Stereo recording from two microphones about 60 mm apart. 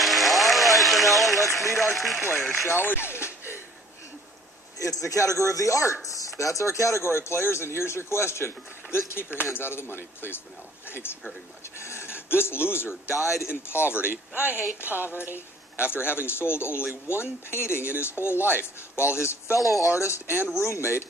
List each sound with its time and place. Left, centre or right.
0.0 s a sound: centre
1.3 s speech: left
1.8 s speech: centre
2.7 s speech: left
4.8 s a man's voice: left
14.9 s speech: right
15.8 s a man's voice: left